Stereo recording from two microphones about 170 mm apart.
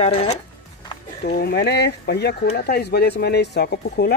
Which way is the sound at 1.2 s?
70° left (ahead or behind).